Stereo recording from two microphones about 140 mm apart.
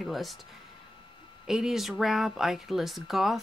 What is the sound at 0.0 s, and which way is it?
Speech, centre (ahead or behind).